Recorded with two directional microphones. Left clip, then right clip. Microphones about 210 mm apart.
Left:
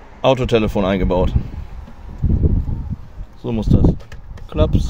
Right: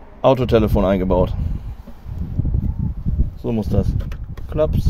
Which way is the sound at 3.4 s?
10° right (ahead or behind).